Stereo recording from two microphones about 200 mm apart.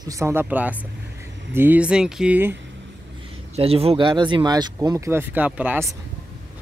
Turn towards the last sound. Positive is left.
turn(degrees=-10)  # may be behind; listen again after turning